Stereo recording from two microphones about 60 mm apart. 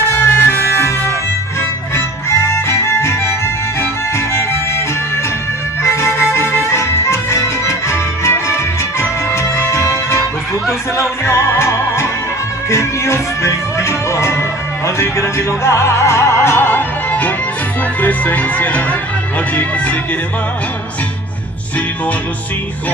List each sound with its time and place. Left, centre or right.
0.1 s music: left
18.0 s speech: left